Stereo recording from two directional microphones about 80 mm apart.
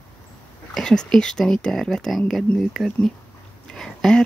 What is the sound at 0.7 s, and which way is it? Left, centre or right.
Speech, centre.